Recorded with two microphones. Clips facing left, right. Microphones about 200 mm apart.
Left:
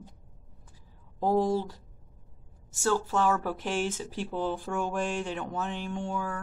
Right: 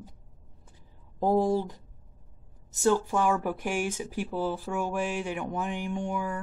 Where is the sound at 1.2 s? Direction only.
15° right (ahead or behind).